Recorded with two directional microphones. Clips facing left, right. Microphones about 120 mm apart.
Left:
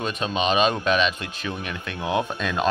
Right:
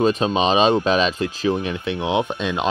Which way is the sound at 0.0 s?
30° right (ahead or behind).